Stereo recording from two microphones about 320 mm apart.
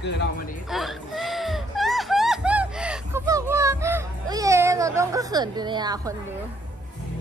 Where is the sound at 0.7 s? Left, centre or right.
Centre.